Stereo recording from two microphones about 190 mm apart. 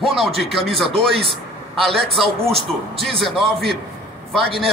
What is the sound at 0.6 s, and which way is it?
Speech, 30° right (ahead or behind).